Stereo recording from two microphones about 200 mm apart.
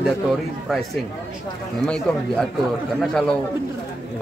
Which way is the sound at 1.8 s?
5° left (ahead or behind).